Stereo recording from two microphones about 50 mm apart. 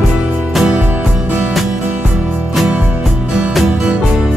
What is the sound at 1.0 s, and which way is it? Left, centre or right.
Music, centre.